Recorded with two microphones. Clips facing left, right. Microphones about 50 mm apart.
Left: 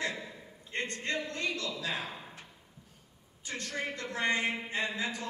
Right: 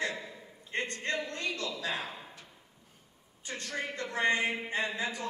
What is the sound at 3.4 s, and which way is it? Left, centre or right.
Speech, right.